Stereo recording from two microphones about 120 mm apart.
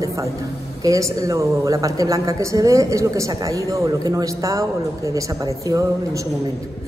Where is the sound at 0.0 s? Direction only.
25° right (ahead or behind).